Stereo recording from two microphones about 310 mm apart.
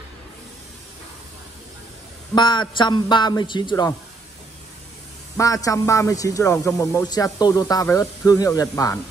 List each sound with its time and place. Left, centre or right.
2.3 s speech: centre
5.4 s speech: centre